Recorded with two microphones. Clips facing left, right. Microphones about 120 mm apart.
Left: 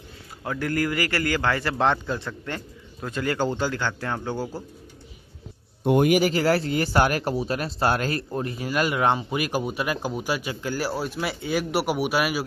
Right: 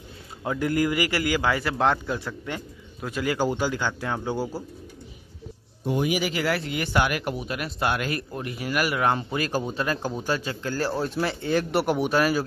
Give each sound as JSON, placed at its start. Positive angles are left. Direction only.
{"t": 0.4, "sound": "a man's voice", "side_deg": -20}
{"t": 5.9, "sound": "speech", "side_deg": 55}